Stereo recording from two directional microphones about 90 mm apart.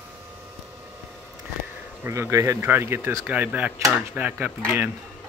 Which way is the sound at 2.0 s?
30° right (ahead or behind).